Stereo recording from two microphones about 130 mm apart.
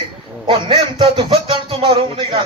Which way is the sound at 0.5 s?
35° right (ahead or behind).